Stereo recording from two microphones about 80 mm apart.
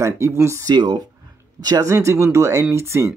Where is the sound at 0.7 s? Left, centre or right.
Right.